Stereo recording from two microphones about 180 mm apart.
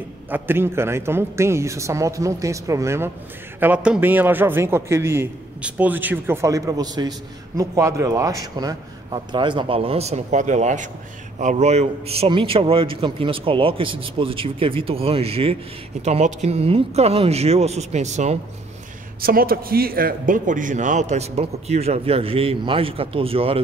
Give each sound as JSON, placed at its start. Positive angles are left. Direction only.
{"t": 0.3, "sound": "a man's voice", "side_deg": -10}
{"t": 19.2, "sound": "a man's voice", "side_deg": -55}